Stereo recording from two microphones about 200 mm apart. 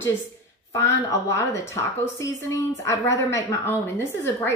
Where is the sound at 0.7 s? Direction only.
15° left (ahead or behind).